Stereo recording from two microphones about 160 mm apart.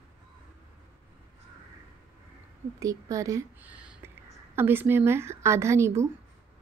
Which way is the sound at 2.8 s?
20° right (ahead or behind).